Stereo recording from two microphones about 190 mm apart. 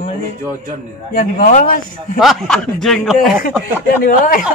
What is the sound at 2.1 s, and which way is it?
Speech, centre (ahead or behind).